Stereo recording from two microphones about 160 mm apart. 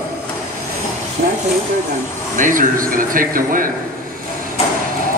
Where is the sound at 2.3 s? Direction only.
55° right (ahead or behind).